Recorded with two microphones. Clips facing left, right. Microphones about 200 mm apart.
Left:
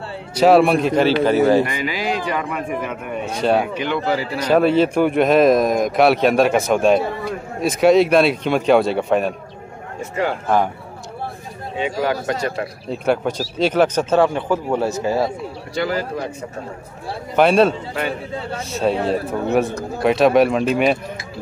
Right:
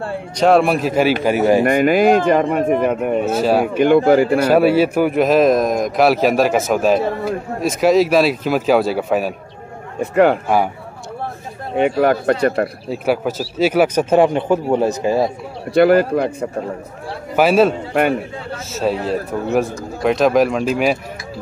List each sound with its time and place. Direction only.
0.4 s a man's voice: centre (ahead or behind); by 1.6 s 15° right (ahead or behind)
1.6 s speech: 50° right (ahead or behind)
3.3 s a man's voice: 5° right (ahead or behind)
3.7 s speech: 50° right (ahead or behind)
4.5 s a man's voice: 10° right (ahead or behind)
12.0 s a man's voice: 55° right (ahead or behind)
12.9 s a man's voice: 5° right (ahead or behind)
15.7 s a man's voice: 60° right (ahead or behind)
17.4 s a man's voice: 5° right (ahead or behind)